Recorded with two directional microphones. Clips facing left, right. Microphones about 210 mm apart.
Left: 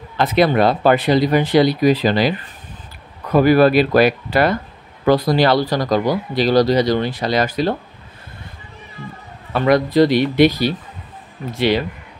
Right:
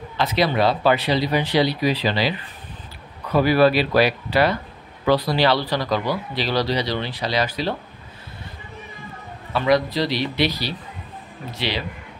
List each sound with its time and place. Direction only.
0.2 s speech: 50° left (ahead or behind)
9.5 s speech: 50° left (ahead or behind)